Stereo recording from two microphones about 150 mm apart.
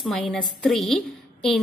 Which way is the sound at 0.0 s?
Centre (ahead or behind).